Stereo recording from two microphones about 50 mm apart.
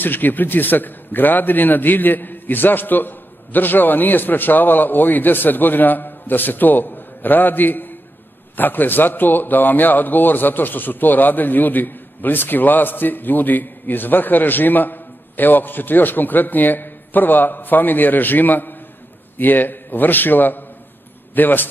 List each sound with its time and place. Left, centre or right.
0.0 s a man's voice: left